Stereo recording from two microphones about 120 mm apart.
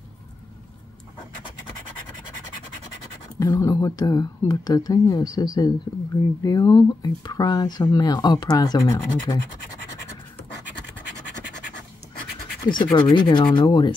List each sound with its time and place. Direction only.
3.3 s speech: 30° left (ahead or behind)
12.6 s speech: 40° left (ahead or behind)